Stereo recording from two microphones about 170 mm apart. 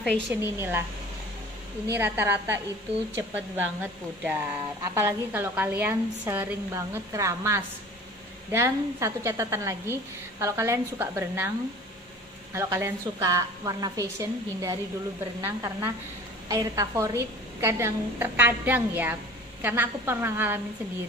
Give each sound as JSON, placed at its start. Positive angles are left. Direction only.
{"t": 0.3, "sound": "a woman's voice", "side_deg": -10}
{"t": 2.0, "sound": "a woman's voice", "side_deg": -15}
{"t": 12.5, "sound": "a woman's voice", "side_deg": -15}